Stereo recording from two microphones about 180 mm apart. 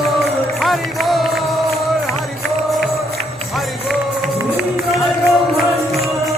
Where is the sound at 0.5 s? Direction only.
Centre (ahead or behind).